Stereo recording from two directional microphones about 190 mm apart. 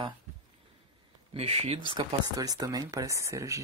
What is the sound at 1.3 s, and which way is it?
Speech, 30° right (ahead or behind).